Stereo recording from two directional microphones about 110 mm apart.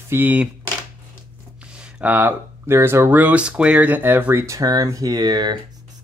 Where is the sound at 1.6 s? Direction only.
10° right (ahead or behind); by 5.5 s 40° right (ahead or behind).